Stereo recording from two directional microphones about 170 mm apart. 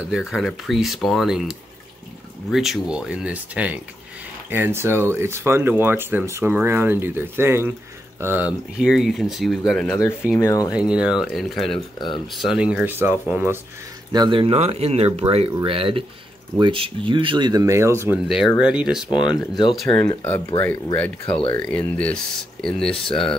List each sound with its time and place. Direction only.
0.0 s speech: 5° right (ahead or behind)
10.4 s speech: 20° left (ahead or behind)
10.7 s speech: 5° right (ahead or behind)
14.1 s speech: 30° right (ahead or behind); by 20.0 s centre (ahead or behind)
20.0 s speech: 15° left (ahead or behind)